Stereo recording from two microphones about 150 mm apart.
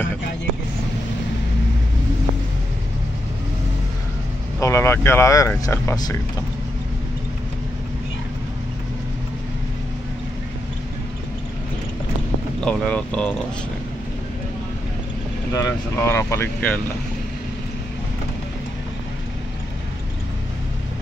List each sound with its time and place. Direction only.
4.6 s speech: 20° left (ahead or behind)
12.5 s speech: 5° left (ahead or behind)
15.5 s speech: 20° left (ahead or behind)